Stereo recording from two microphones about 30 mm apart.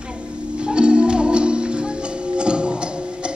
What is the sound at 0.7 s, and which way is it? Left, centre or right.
Music, right.